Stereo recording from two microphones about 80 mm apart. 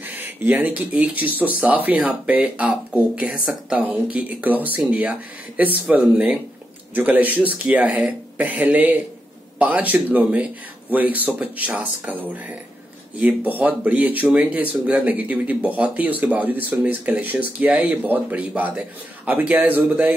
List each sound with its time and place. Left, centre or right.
0.0 s speech: right